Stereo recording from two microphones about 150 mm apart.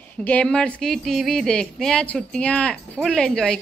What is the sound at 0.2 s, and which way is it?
Speech, 10° left (ahead or behind).